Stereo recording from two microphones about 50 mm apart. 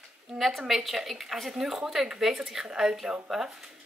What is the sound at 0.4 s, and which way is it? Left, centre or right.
A woman's voice, centre.